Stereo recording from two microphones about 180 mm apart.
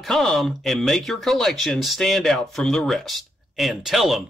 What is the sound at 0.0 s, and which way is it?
Speech, centre (ahead or behind).